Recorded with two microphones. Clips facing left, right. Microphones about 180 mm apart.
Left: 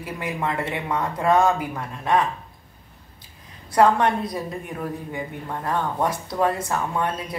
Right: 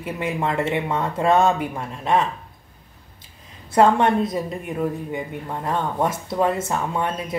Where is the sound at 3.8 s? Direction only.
25° right (ahead or behind).